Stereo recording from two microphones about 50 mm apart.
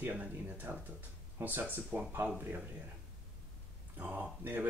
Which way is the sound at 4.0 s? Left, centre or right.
Right.